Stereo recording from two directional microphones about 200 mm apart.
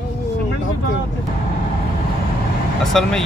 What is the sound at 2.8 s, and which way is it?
Speech, centre (ahead or behind).